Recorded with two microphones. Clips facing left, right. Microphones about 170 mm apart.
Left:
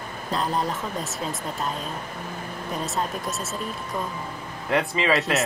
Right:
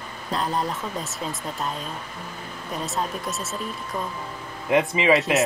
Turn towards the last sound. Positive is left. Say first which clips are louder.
# right 3 dB
turn(degrees=-15)  # may be behind; listen again after turning